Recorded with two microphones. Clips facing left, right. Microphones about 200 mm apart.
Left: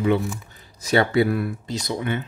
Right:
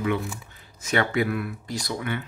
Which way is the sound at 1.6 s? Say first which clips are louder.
Left 4 dB; 25° left (ahead or behind).